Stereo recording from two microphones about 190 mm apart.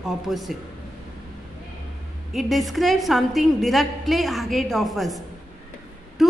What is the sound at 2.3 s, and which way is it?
A woman's voice, centre (ahead or behind).